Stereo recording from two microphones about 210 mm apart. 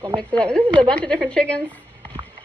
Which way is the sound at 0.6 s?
20° right (ahead or behind).